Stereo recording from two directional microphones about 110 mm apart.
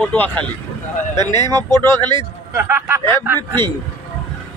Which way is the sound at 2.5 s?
20° right (ahead or behind).